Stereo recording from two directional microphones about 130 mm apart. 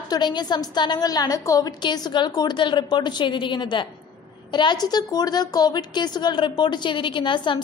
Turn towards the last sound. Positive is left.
turn(degrees=40)  # may be behind; listen again after turning